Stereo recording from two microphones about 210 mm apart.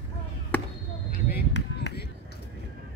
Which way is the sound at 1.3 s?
50° left (ahead or behind).